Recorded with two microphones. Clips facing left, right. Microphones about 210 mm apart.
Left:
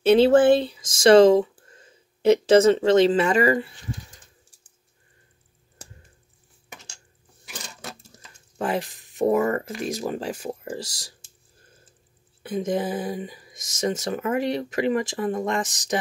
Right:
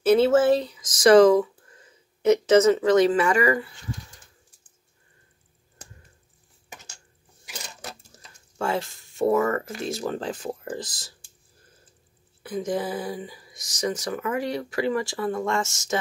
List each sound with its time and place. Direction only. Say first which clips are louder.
0.3 s speech: left 3 dB; 30° left (ahead or behind)
8.5 s speech: left 1 dB; 15° left (ahead or behind)
12.4 s speech: left 2 dB; 20° left (ahead or behind)